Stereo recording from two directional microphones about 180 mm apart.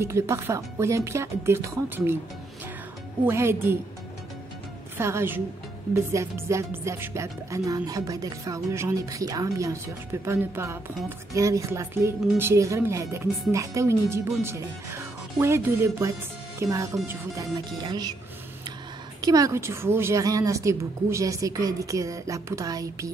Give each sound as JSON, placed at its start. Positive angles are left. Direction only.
{"t": 0.0, "sound": "a woman's voice", "side_deg": -15}
{"t": 3.3, "sound": "a woman's voice", "side_deg": -15}
{"t": 4.9, "sound": "a woman's voice", "side_deg": -15}
{"t": 19.2, "sound": "a woman's voice", "side_deg": -20}